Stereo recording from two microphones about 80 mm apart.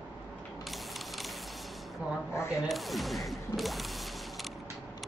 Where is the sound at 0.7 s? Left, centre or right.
Centre.